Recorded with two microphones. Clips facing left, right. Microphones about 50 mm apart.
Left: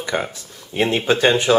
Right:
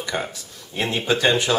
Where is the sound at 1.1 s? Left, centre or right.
Centre.